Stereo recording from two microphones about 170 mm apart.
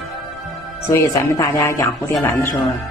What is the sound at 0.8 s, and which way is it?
Speech, 15° left (ahead or behind).